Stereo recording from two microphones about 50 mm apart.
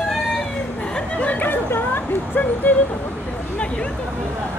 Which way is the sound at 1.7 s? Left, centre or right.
Left.